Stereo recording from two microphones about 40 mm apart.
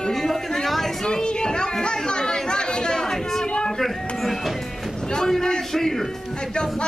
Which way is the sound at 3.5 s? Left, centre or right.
Centre.